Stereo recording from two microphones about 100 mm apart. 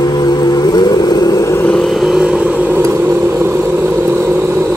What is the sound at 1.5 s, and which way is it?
Vehicle, 15° left (ahead or behind).